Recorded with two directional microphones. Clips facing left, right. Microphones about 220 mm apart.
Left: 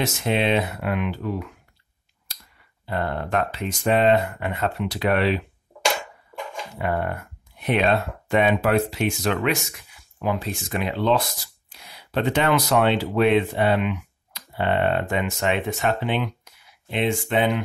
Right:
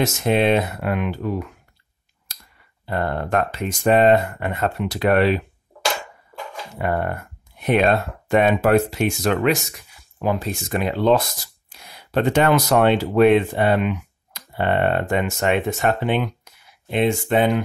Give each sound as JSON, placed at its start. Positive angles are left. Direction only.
{"t": 0.0, "sound": "speech", "side_deg": -45}
{"t": 2.9, "sound": "speech", "side_deg": -45}
{"t": 6.8, "sound": "speech", "side_deg": -45}